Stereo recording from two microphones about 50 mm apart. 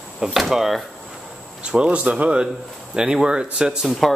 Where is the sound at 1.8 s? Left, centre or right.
Right.